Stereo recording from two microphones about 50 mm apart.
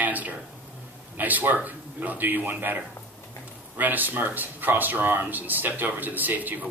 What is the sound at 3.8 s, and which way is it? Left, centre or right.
A man's voice, right.